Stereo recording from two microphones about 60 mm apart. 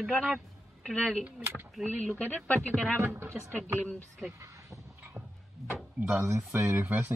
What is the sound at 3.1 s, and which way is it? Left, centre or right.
Speech, right.